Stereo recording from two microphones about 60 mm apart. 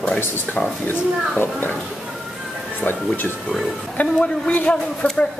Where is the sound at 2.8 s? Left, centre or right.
Left.